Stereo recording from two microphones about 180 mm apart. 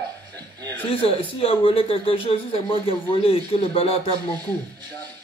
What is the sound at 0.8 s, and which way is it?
Speech, 30° left (ahead or behind).